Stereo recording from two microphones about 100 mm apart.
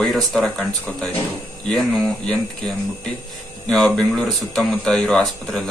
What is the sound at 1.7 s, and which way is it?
Speech, 10° left (ahead or behind).